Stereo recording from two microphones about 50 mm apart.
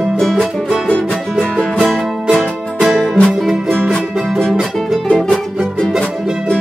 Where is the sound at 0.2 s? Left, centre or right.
Centre.